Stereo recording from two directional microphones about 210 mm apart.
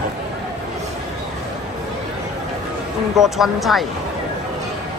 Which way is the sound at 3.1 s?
Centre (ahead or behind).